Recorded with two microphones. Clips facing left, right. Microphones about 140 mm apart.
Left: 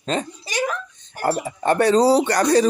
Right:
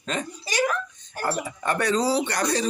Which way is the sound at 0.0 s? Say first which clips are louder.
Left 5 dB; 30° left (ahead or behind).